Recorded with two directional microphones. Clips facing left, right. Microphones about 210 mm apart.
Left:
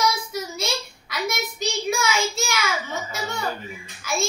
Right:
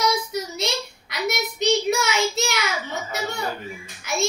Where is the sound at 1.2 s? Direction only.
20° right (ahead or behind).